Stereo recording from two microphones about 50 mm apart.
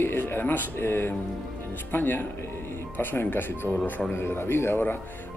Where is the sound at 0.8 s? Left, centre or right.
Left.